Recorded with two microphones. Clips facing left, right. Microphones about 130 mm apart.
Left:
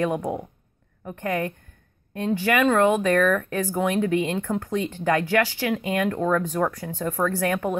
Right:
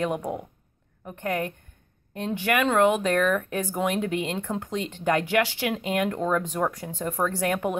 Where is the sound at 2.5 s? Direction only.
10° right (ahead or behind).